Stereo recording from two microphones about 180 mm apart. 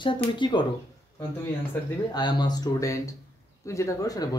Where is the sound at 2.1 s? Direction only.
25° left (ahead or behind).